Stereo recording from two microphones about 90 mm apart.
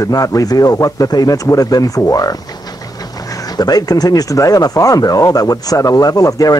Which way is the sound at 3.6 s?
45° left (ahead or behind).